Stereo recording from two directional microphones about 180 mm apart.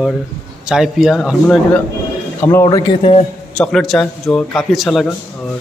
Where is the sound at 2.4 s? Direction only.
15° left (ahead or behind).